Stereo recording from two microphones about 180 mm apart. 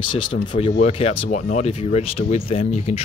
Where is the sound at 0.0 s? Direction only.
25° left (ahead or behind).